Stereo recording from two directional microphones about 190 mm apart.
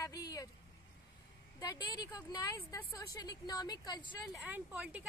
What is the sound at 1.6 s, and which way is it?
Speech, 20° left (ahead or behind).